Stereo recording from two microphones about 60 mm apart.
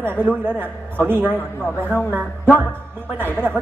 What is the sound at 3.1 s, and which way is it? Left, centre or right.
Speech, right.